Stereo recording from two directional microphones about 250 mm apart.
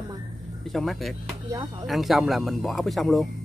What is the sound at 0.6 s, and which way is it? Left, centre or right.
Speech, centre.